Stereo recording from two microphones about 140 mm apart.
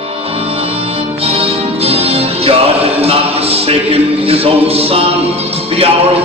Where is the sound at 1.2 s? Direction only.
45° right (ahead or behind).